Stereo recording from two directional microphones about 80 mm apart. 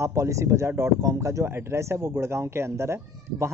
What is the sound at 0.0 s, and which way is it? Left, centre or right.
Speech, right.